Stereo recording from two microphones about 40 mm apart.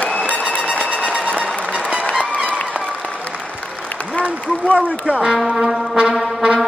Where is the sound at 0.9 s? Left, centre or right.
Right.